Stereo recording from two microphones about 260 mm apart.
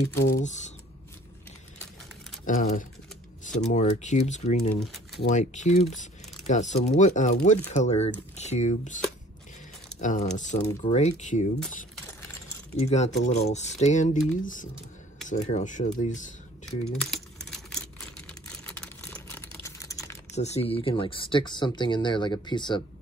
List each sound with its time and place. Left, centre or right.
0.3 s speech: left
2.5 s speech: left
4.7 s speech: centre
5.3 s speech: left
12.7 s speech: left
16.9 s a sound: centre
19.6 s typing: centre
20.3 s speech: left